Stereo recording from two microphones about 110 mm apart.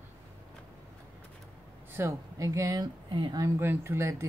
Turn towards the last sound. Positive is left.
turn(degrees=-25)  # may be behind; listen again after turning